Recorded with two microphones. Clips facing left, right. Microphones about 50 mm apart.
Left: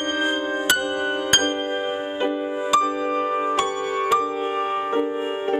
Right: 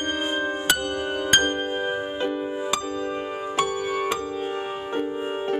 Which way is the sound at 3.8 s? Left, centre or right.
Centre.